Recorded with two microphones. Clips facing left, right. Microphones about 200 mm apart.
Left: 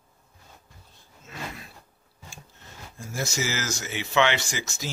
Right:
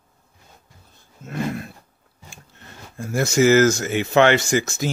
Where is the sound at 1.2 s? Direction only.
55° right (ahead or behind).